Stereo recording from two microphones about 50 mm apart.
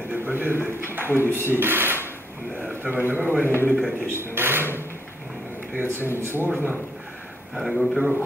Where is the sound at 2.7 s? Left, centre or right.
Right.